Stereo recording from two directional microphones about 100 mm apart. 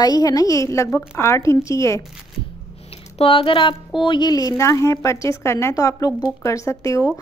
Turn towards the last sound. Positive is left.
turn(degrees=35)  # may be behind; listen again after turning